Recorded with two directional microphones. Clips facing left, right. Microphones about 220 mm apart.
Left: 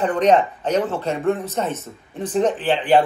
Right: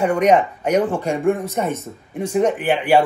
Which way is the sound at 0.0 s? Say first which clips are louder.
Right 1 dB; 10° right (ahead or behind).